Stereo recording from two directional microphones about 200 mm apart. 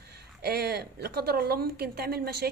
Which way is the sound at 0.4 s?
55° right (ahead or behind).